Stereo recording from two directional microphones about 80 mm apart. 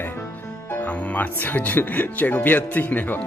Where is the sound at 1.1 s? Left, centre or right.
Left.